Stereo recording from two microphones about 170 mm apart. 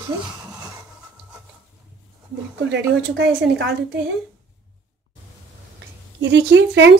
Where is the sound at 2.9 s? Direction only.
90° right.